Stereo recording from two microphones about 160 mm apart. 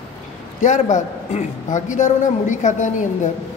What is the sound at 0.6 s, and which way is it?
Speech, 50° left (ahead or behind).